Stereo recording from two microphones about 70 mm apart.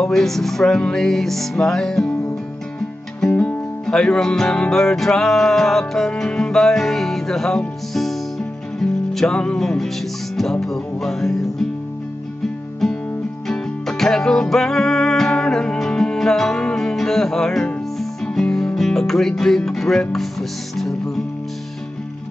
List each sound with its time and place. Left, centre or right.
0.0 s music: centre
3.3 s music: centre
3.8 s music: centre
13.5 s music: centre